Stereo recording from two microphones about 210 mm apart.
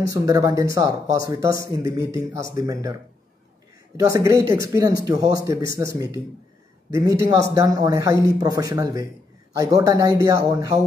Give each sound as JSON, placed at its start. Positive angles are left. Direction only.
{"t": 0.1, "sound": "speech", "side_deg": -15}